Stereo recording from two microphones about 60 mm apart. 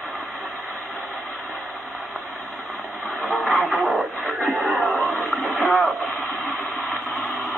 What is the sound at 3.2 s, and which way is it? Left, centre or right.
Radio, centre.